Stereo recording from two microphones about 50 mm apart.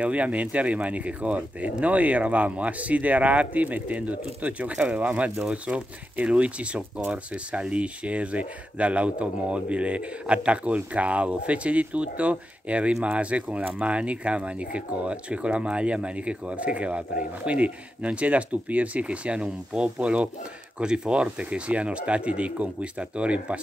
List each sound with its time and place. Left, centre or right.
0.0 s speech: right